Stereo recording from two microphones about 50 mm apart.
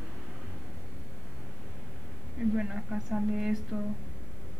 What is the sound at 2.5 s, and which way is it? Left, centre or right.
Speech, centre.